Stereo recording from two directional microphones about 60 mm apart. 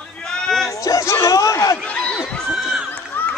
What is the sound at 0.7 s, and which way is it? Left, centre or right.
Speech, left.